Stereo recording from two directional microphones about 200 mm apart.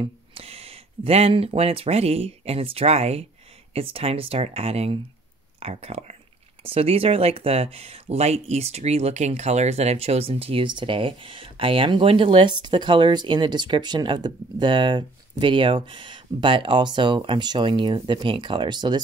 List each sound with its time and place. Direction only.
0.0 s speech: 30° right (ahead or behind)